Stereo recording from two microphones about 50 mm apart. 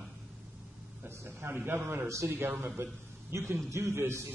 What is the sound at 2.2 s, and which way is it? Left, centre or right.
Speech, right.